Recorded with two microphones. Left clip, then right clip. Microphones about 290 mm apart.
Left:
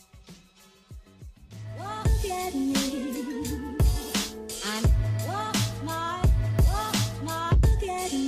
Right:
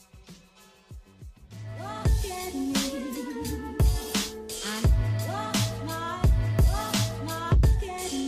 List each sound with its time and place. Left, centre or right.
1.8 s music: right
2.7 s music: centre
3.0 s music: centre
3.7 s music: centre
4.9 s music: centre
5.5 s music: centre
5.8 s music: right
6.5 s music: centre
7.2 s music: right
7.4 s music: centre